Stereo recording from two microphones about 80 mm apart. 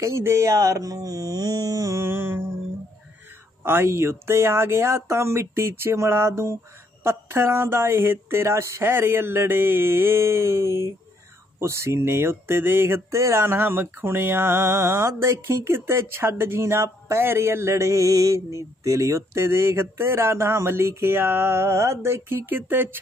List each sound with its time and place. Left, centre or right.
0.0 s speech: right
3.6 s speech: right